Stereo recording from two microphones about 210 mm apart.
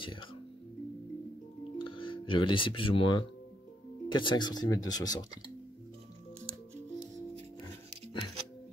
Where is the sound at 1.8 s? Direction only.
25° left (ahead or behind).